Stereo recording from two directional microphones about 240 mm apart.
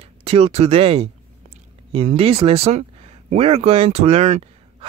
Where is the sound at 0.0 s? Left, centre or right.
Right.